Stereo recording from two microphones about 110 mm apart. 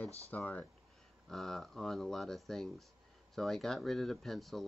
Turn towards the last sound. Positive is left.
turn(degrees=0)  # may be behind; listen again after turning